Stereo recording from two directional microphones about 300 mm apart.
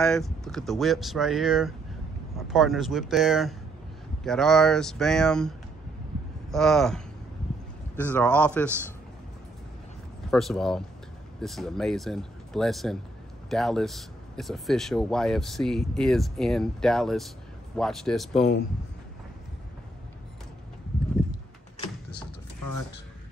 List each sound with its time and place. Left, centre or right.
0.0 s speech: centre
6.5 s speech: centre
10.3 s speech: centre
21.7 s door: left